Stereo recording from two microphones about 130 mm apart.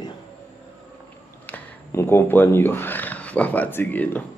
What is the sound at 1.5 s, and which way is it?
Speech, 20° left (ahead or behind).